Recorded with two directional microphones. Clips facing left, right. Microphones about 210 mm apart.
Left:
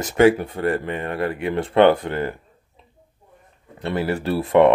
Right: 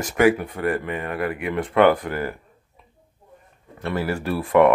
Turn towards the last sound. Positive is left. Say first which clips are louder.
# left 2 dB
turn(degrees=25)  # may be behind; listen again after turning